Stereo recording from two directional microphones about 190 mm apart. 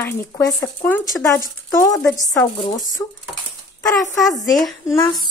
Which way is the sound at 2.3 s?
20° left (ahead or behind).